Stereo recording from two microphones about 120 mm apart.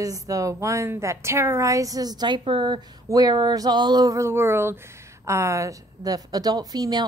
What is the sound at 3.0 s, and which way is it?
A woman's voice, 35° right (ahead or behind).